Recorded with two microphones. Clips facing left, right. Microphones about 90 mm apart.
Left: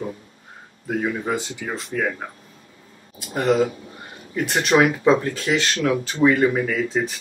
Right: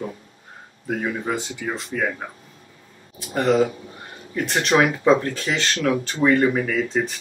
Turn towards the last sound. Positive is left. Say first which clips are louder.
# even
turn(degrees=5)  # may be behind; listen again after turning